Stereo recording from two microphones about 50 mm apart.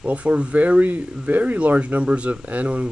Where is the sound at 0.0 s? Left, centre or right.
Right.